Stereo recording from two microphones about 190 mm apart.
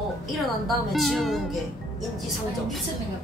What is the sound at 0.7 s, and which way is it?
A woman's voice, centre (ahead or behind).